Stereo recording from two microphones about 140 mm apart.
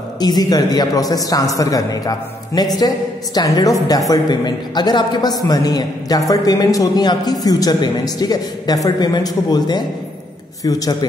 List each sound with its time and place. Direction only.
0.2 s a man's voice: 30° left (ahead or behind)